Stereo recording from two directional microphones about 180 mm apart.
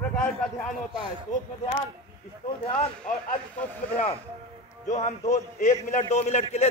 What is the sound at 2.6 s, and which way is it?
Speech, 35° left (ahead or behind).